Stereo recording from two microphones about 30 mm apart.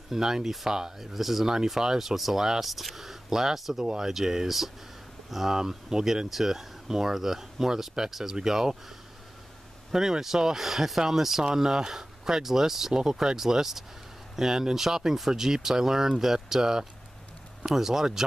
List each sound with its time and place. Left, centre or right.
0.1 s speech: centre
1.1 s speech: centre
3.5 s speech: centre
3.8 s speech: right
5.6 s speech: centre
9.8 s speech: centre